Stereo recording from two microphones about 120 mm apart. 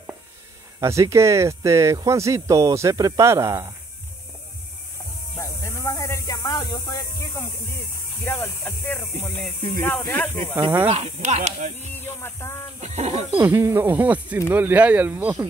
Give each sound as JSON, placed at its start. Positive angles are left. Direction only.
{"t": 0.7, "sound": "speech", "side_deg": -25}
{"t": 5.4, "sound": "a sound", "side_deg": 25}
{"t": 8.3, "sound": "speech", "side_deg": 15}
{"t": 10.9, "sound": "speech", "side_deg": -70}
{"t": 11.9, "sound": "speech", "side_deg": 20}
{"t": 12.8, "sound": "speech", "side_deg": -75}
{"t": 13.4, "sound": "speech", "side_deg": -20}